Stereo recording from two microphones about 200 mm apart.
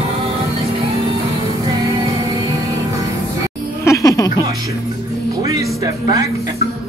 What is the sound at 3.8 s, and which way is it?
Music, 15° left (ahead or behind).